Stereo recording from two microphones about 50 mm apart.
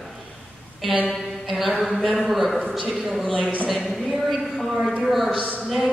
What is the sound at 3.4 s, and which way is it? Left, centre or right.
Speech, right.